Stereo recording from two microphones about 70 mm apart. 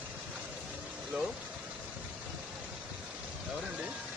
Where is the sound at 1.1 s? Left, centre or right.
Centre.